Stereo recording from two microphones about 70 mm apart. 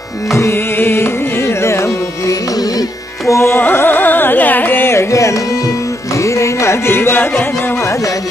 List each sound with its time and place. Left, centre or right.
0.3 s carnatic music: left
0.7 s carnatic music: left
3.3 s music: left
3.6 s carnatic music: left
5.1 s music: left